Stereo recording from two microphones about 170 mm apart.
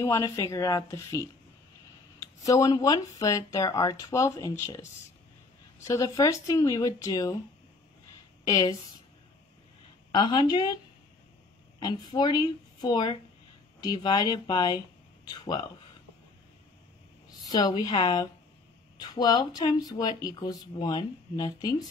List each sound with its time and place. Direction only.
0.0 s speech: 20° left (ahead or behind)
2.1 s a sound: 20° left (ahead or behind)
2.8 s speech: 20° left (ahead or behind)
8.5 s speech: 25° left (ahead or behind)
10.1 s speech: 25° left (ahead or behind)
11.8 s speech: 25° left (ahead or behind)
17.5 s speech: 25° left (ahead or behind)